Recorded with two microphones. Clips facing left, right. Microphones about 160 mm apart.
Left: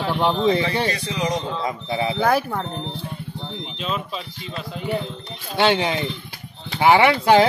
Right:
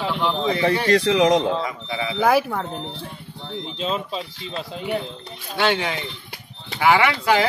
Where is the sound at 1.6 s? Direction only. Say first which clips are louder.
Left 3 dB; 35° left (ahead or behind).